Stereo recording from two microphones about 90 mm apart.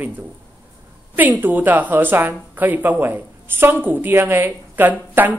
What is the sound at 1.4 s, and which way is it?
Speech, 20° right (ahead or behind).